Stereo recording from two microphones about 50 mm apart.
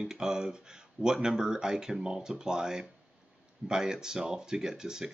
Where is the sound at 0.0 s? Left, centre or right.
Centre.